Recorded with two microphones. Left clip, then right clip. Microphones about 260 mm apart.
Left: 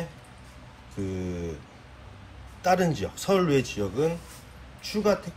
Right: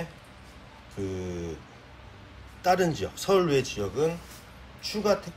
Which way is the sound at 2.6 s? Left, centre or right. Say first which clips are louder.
Even; centre.